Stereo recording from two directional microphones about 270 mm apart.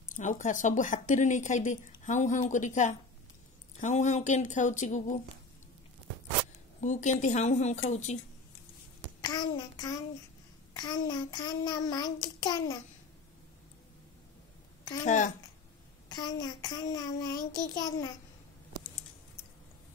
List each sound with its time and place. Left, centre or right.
0.1 s speech: left
6.8 s speech: left
9.2 s child singing: centre
15.0 s speech: left
16.1 s child singing: centre